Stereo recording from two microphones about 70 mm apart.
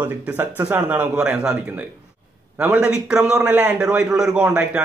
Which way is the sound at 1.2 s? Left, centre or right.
Centre.